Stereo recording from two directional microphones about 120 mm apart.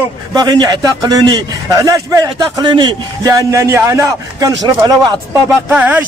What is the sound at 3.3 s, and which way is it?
Speech, 25° right (ahead or behind).